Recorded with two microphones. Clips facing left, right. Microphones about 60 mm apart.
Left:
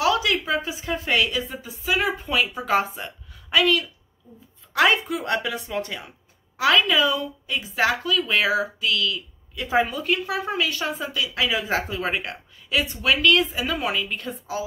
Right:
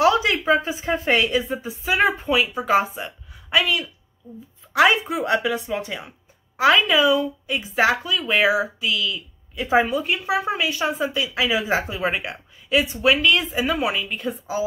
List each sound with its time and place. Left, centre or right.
0.0 s a woman's voice: right
2.2 s a woman's voice: centre
6.9 s speech: centre
11.3 s speech: centre